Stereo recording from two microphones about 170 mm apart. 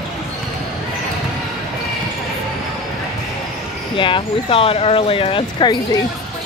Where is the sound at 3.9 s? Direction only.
30° left (ahead or behind).